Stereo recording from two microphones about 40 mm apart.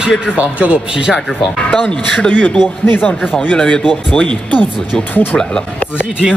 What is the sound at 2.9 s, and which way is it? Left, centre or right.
Speech, left.